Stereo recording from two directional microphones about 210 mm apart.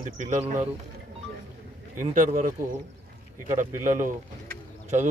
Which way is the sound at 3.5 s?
40° right (ahead or behind).